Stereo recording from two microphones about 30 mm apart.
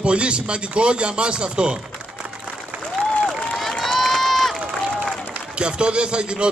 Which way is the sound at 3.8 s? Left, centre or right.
Centre.